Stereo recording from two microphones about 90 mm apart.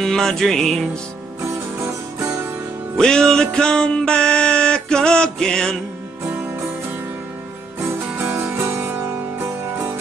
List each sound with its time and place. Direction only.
0.0 s music: 5° left (ahead or behind)
1.4 s music: 30° right (ahead or behind)
3.0 s music: 5° left (ahead or behind)
8.2 s music: 25° right (ahead or behind)